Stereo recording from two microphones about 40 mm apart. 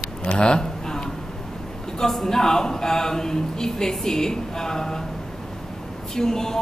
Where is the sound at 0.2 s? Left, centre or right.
Left.